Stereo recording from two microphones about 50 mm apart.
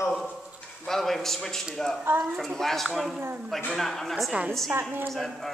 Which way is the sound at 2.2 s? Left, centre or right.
Centre.